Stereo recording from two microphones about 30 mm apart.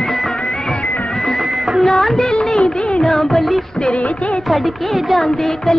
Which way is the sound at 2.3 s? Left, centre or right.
Left.